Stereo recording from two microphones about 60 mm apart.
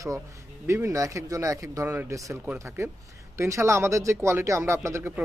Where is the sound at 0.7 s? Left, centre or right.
Right.